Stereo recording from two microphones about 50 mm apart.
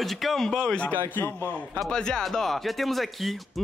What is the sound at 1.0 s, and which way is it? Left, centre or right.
Speech, left.